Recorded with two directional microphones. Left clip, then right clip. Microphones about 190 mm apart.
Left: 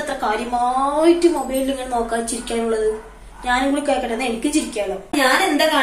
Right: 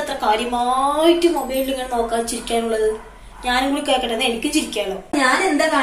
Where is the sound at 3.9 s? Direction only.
Centre (ahead or behind).